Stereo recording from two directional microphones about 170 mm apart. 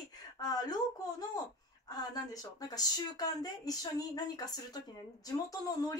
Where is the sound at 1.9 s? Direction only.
20° left (ahead or behind).